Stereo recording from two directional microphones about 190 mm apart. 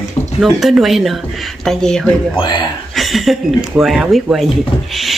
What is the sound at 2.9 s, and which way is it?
Speech, centre (ahead or behind).